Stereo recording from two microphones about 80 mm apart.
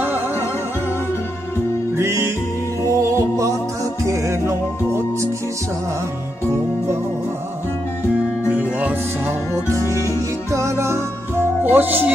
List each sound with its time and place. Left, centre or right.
2.0 s music: right
8.5 s music: centre
9.9 s music: right
11.6 s music: right